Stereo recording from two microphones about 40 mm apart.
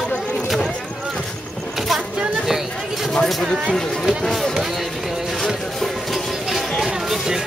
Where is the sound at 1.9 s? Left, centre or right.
Centre.